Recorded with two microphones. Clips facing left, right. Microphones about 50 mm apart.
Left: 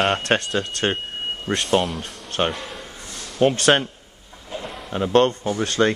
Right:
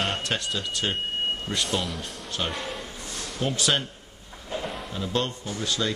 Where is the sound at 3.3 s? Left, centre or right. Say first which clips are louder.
Left 10 dB; left.